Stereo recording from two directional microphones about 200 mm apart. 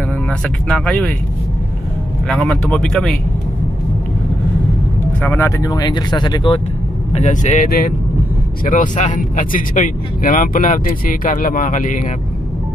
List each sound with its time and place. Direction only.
0.3 s speech: 5° left (ahead or behind)
2.2 s speech: centre (ahead or behind)
5.2 s speech: 10° left (ahead or behind)
7.2 s speech: 35° left (ahead or behind)